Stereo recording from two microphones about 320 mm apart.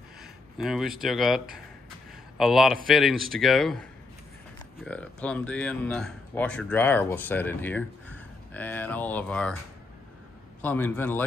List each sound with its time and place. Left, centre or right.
0.2 s speech: centre
4.8 s speech: centre
10.6 s speech: centre